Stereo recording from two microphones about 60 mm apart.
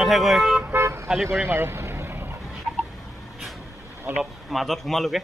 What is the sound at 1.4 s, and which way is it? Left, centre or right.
Boat, right.